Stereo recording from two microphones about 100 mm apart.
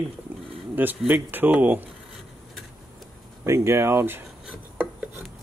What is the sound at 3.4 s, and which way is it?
Speech, 30° right (ahead or behind).